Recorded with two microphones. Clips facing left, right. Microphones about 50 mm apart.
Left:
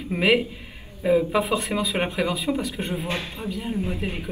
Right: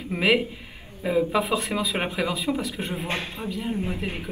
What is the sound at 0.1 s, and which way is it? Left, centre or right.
Speech, centre.